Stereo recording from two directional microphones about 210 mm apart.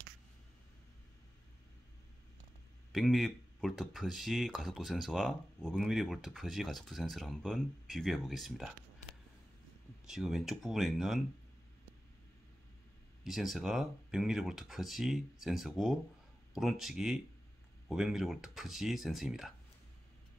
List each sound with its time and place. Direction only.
2.9 s speech: centre (ahead or behind)
10.0 s speech: centre (ahead or behind)
13.2 s speech: centre (ahead or behind)